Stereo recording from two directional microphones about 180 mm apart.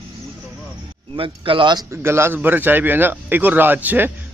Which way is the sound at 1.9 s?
15° right (ahead or behind).